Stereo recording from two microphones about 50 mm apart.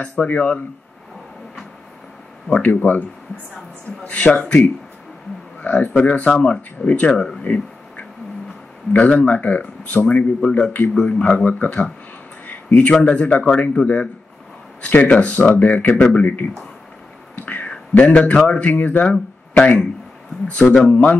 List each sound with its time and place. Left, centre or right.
0.0 s speech: left
2.5 s speech: left
6.3 s speech: centre
8.9 s speech: left
12.4 s a sound: left
13.0 s speech: left
17.9 s speech: left
19.5 s speech: left